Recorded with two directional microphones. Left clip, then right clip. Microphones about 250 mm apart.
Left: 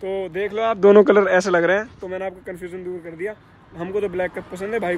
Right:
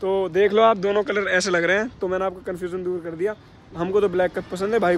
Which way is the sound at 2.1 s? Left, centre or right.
Centre.